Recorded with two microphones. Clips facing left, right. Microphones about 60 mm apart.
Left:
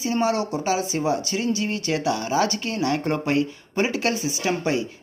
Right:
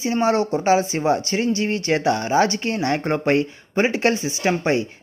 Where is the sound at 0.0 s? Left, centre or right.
Right.